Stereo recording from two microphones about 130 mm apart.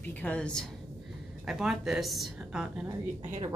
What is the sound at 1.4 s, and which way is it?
A woman's voice, 5° right (ahead or behind).